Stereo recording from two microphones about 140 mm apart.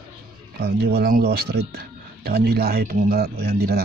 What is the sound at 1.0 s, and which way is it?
Speech, 90° right.